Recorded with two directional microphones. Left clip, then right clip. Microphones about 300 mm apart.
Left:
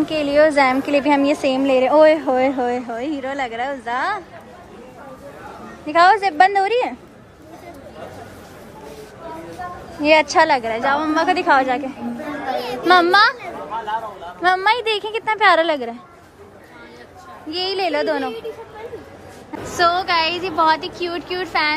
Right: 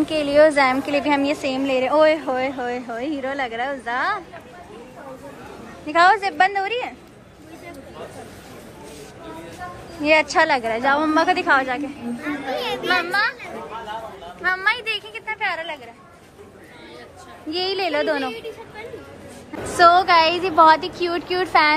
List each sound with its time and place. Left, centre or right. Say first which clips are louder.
0.0 s a woman's voice: even; centre
5.9 s a woman's voice: left 2 dB; centre
10.0 s a woman's voice: left 3 dB; centre
12.9 s a child's voice: left 9 dB; left
14.4 s a woman's voice: left 5 dB; centre
15.3 s a woman's voice: left 12 dB; left
17.6 s a woman's voice: left 2 dB; centre
19.8 s a woman's voice: right 4 dB; centre